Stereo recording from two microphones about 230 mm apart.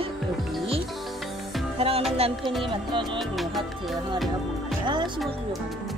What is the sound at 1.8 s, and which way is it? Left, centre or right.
Music, right.